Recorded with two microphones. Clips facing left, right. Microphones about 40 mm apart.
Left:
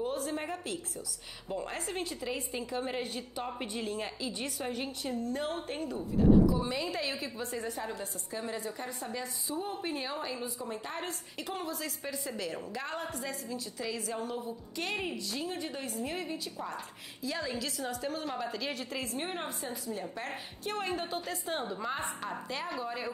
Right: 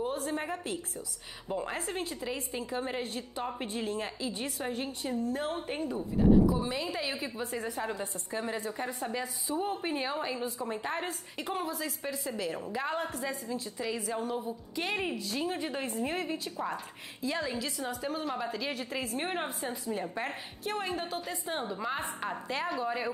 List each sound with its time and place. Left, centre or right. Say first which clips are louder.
0.0 s a woman's voice: right 1 dB; centre
3.6 s a woman's voice: right 2 dB; centre
3.9 s a woman's voice: right 2 dB; centre
6.6 s a woman's voice: even; centre
7.9 s a woman's voice: right 3 dB; right
17.4 s a woman's voice: right 1 dB; centre
19.1 s a woman's voice: right 3 dB; centre
20.2 s a woman's voice: right 2 dB; centre
22.5 s a woman's voice: right 6 dB; centre